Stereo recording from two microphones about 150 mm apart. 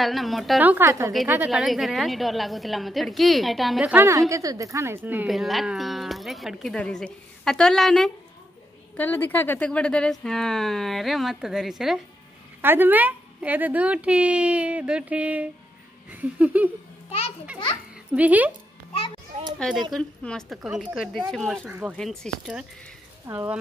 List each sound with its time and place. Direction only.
0.0 s speech: centre (ahead or behind)
0.6 s speech: 10° right (ahead or behind)
1.5 s speech: centre (ahead or behind)
3.9 s speech: 15° right (ahead or behind)
5.3 s speech: centre (ahead or behind)
12.6 s speech: 15° right (ahead or behind)
18.1 s speech: 10° right (ahead or behind)
19.9 s speech: 5° left (ahead or behind)
21.6 s speech: 10° right (ahead or behind)
21.9 s speech: 5° left (ahead or behind)